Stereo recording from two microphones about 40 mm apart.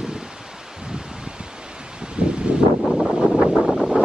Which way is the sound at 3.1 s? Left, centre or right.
Centre.